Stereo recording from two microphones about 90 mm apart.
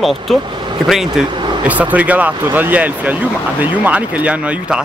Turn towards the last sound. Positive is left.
turn(degrees=-15)  # may be behind; listen again after turning